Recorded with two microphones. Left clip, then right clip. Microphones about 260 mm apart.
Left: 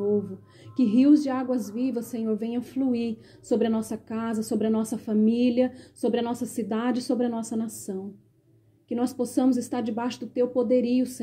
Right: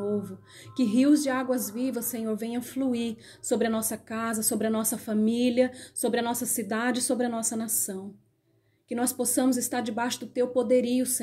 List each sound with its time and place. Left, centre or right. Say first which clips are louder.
0.7 s a woman's voice: left 3 dB; centre